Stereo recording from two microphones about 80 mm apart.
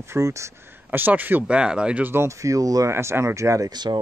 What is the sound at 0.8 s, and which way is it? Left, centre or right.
Speech, right.